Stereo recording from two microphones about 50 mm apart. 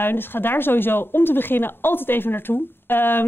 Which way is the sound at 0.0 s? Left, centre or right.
Left.